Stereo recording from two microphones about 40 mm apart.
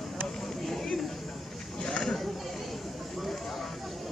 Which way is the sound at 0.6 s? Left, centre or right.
Centre.